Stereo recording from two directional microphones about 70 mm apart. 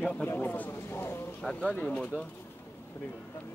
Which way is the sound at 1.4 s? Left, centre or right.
Centre.